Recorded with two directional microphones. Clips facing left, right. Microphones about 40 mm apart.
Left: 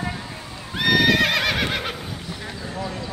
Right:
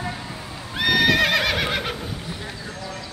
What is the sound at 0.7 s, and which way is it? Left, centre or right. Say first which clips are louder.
Neigh: left 1 dB; centre.